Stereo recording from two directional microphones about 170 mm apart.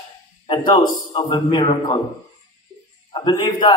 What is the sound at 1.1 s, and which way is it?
Speech, 30° left (ahead or behind).